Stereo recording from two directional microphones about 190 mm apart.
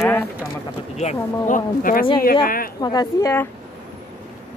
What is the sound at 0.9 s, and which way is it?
Speech, 40° left (ahead or behind).